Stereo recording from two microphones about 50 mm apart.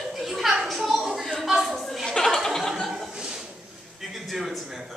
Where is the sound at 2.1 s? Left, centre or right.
Centre.